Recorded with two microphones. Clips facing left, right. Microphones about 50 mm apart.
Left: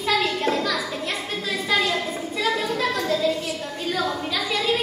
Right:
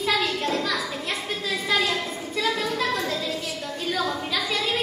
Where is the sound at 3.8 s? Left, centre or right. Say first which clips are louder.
Left 1 dB; centre.